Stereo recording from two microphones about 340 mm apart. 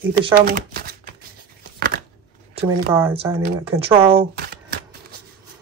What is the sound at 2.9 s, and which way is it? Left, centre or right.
Speech, centre.